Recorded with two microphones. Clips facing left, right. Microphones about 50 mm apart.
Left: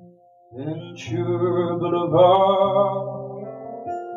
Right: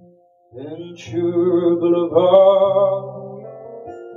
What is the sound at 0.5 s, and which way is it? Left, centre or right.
Mantra, centre.